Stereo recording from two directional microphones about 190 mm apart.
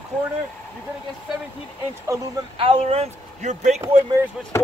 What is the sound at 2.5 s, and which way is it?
A man's voice, 25° right (ahead or behind).